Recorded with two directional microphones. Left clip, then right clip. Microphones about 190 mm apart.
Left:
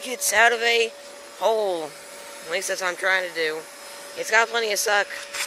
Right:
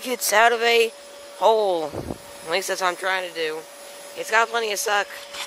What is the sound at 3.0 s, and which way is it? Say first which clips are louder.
Speech: left 2 dB; 5° right (ahead or behind).